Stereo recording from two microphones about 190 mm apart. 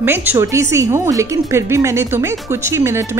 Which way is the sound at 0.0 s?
10° right (ahead or behind).